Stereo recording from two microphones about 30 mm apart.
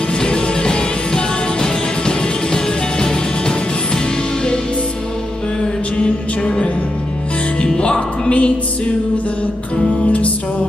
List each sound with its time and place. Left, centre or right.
0.2 s music: left
5.9 s music: left